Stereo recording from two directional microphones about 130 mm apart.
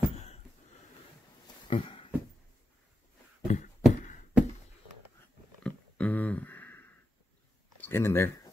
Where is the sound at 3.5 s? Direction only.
60° left (ahead or behind).